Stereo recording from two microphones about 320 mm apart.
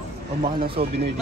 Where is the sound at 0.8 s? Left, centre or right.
Right.